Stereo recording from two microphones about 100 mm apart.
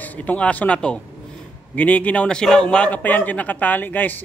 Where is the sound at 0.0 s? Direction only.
15° left (ahead or behind).